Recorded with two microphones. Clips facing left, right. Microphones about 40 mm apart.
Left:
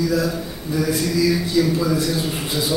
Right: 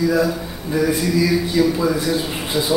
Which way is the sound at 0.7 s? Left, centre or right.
Right.